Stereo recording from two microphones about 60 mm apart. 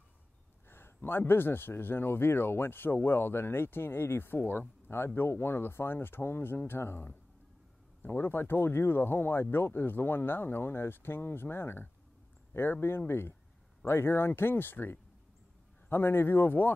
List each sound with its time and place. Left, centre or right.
0.7 s speech: left